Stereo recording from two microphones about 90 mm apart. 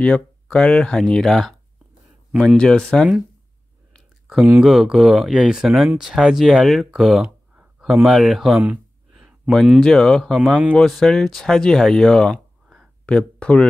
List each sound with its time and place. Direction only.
0.0 s speech: 15° left (ahead or behind)
4.3 s speech: 15° right (ahead or behind)
4.6 s speech: 5° right (ahead or behind)
8.6 s a sound: 15° right (ahead or behind)
9.5 s speech: centre (ahead or behind)